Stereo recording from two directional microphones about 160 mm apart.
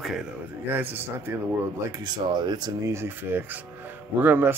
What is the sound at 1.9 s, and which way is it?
Speech, 25° right (ahead or behind).